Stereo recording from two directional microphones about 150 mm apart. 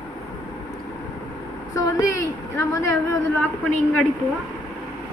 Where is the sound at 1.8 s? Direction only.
20° left (ahead or behind).